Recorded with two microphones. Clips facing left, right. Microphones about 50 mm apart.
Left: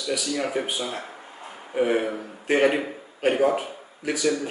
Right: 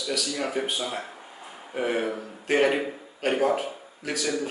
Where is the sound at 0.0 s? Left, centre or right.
Centre.